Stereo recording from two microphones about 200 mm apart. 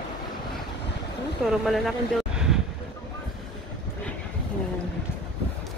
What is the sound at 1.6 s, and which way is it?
Speech, centre (ahead or behind).